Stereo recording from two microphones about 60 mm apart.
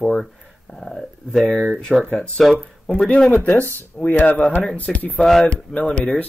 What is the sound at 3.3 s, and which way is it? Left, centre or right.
Speech, left.